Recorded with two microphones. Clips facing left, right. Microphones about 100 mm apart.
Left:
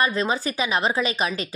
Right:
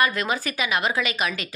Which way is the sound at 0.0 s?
30° left (ahead or behind).